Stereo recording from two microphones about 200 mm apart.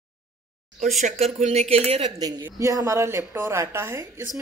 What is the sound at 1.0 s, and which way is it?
A woman's voice, 35° right (ahead or behind).